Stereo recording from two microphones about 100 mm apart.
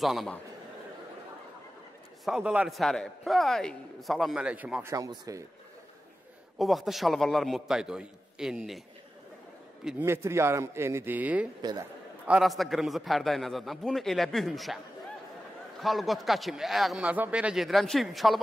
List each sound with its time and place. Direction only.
0.0 s speech: centre (ahead or behind)
2.2 s a man's voice: 10° right (ahead or behind)
2.7 s speech: 5° left (ahead or behind)
4.8 s speech: 35° right (ahead or behind)
6.6 s speech: centre (ahead or behind)
9.9 s a man's voice: 25° right (ahead or behind)
12.3 s speech: centre (ahead or behind)
15.8 s speech: centre (ahead or behind)